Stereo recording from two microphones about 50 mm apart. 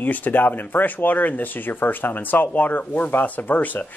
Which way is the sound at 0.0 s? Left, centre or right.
Left.